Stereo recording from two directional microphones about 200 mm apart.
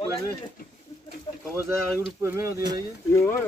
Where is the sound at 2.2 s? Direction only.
15° right (ahead or behind).